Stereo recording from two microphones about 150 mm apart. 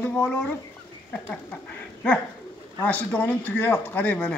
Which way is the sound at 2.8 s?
10° left (ahead or behind).